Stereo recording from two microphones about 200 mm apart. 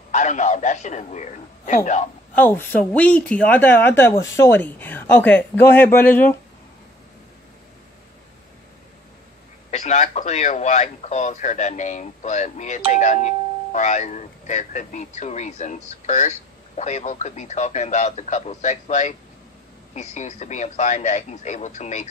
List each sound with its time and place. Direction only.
0.1 s speech: 35° left (ahead or behind)
2.3 s speech: 10° left (ahead or behind)
9.7 s speech: 35° left (ahead or behind)